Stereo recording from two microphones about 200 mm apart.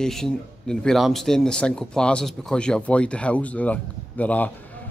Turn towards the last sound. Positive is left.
turn(degrees=10)  # may be behind; listen again after turning